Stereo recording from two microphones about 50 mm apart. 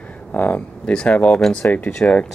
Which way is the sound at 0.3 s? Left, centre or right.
Left.